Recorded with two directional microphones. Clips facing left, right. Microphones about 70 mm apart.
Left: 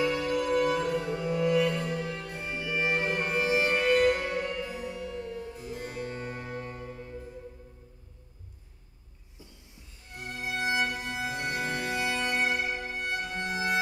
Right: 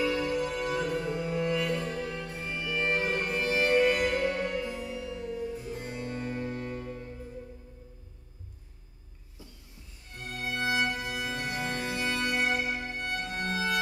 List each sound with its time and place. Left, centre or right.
0.2 s music: centre
0.7 s music: centre
1.1 s music: centre
1.4 s music: centre
3.8 s music: centre
4.1 s music: centre
4.4 s music: centre
5.7 s music: centre
6.0 s music: left
10.1 s music: centre
11.4 s bagpipes: centre
12.5 s music: centre
12.8 s music: centre